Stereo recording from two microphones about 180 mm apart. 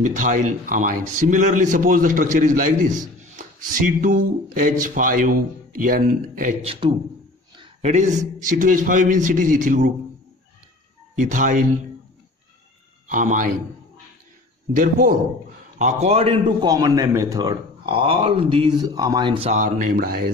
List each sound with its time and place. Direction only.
0.0 s a man's voice: 45° right (ahead or behind)
6.6 s a man's voice: 30° right (ahead or behind)
7.5 s a sound: 25° right (ahead or behind)
7.9 s a man's voice: 40° right (ahead or behind)
11.1 s a man's voice: 45° right (ahead or behind)
13.1 s a man's voice: 45° right (ahead or behind)
14.7 s a man's voice: 50° right (ahead or behind)
15.8 s a man's voice: 35° right (ahead or behind)
19.5 s a man's voice: 45° right (ahead or behind)